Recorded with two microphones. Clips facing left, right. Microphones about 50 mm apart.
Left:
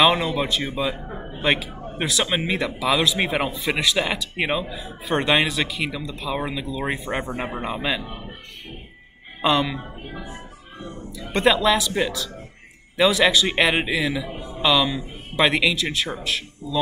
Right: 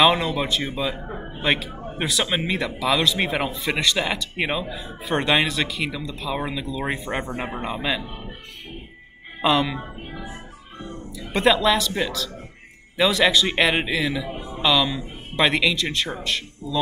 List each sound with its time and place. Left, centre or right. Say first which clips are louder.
0.0 s a man's voice: even; centre
9.4 s a man's voice: even; centre
11.1 s a man's voice: even; centre